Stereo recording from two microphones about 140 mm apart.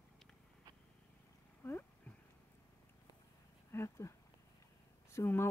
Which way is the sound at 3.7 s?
20° left (ahead or behind).